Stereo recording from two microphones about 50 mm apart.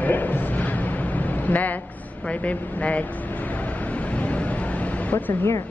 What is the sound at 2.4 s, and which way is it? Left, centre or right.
Speech, left.